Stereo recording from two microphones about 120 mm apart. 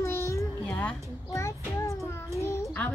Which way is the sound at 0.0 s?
25° left (ahead or behind).